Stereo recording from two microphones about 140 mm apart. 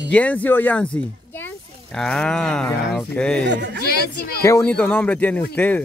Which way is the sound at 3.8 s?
90° left.